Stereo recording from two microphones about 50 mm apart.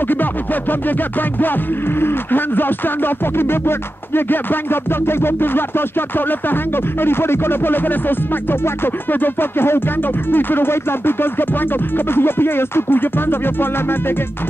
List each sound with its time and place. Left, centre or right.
0.1 s music: left
2.0 s speech: left